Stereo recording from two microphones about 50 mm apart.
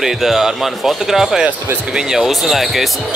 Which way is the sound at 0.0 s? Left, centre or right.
Centre.